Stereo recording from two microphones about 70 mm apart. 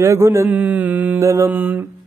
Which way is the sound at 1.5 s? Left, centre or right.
Right.